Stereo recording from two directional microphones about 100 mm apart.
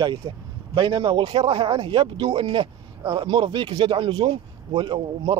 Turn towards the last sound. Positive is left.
turn(degrees=-55)  # may be behind; listen again after turning